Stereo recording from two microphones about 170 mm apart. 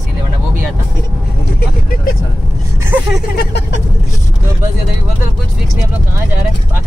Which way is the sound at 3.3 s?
75° left (ahead or behind).